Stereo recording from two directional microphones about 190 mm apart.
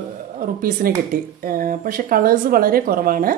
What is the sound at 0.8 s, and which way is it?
A woman's voice, 50° right (ahead or behind).